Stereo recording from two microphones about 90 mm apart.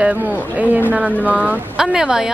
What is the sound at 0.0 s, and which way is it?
A woman's voice, 15° right (ahead or behind).